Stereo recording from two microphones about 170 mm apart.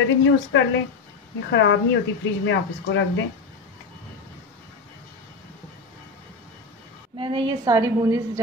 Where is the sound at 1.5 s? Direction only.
90° left.